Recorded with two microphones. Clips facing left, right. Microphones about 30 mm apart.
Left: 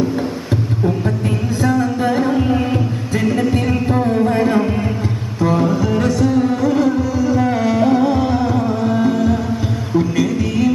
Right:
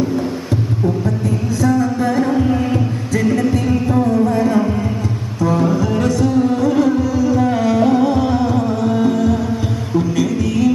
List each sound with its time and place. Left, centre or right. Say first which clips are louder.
1.6 s a sound: right 1 dB; left
2.2 s music: even; centre
4.0 s music: even; left
5.4 s music: even; centre